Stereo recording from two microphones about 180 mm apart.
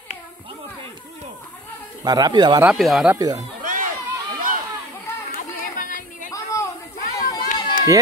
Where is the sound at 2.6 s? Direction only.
Centre (ahead or behind).